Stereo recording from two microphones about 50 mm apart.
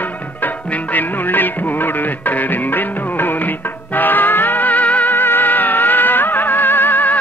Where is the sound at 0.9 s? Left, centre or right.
Left.